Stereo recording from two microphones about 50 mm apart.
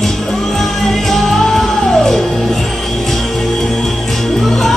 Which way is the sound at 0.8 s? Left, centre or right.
Centre.